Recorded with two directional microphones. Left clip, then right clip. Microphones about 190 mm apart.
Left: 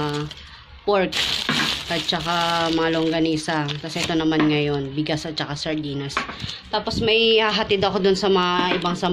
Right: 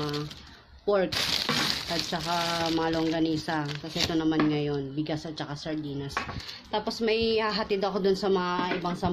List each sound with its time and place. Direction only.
0.8 s speech: 5° left (ahead or behind)
6.7 s speech: 10° right (ahead or behind); by 9.1 s 5° left (ahead or behind)